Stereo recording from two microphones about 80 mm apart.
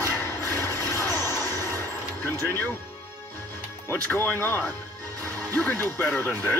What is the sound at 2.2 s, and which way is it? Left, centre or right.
Speech, left.